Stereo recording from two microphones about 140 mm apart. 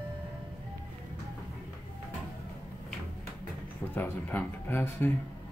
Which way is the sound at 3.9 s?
15° left (ahead or behind).